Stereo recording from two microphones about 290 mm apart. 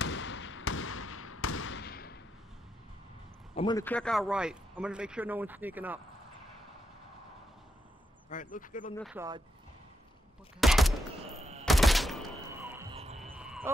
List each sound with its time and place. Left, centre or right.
0.0 s basketball bounce: left
3.5 s a man's voice: centre
8.3 s speech: left
8.9 s a man's voice: centre
10.6 s fusillade: centre
11.1 s gunshot: right
11.6 s thunk: centre
12.9 s music: right
13.2 s a sound: centre